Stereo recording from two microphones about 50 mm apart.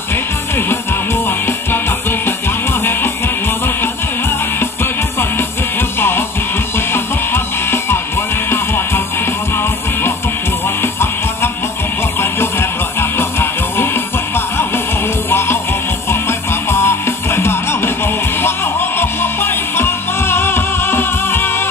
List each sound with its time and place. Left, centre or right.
0.1 s music: left
5.8 s music: left
15.2 s music: left